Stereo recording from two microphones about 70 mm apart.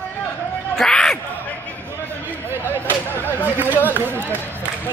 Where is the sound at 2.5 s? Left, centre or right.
Right.